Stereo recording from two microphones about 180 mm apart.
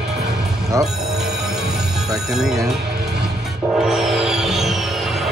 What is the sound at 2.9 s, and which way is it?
Music, 65° right (ahead or behind).